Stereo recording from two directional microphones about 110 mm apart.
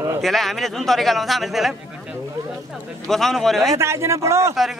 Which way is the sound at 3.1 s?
5° left (ahead or behind).